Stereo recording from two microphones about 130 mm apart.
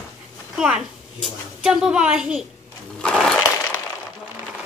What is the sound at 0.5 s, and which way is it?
A woman's voice, 5° right (ahead or behind).